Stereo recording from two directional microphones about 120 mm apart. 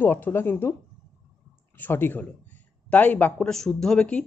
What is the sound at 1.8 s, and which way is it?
A man's voice, 15° left (ahead or behind).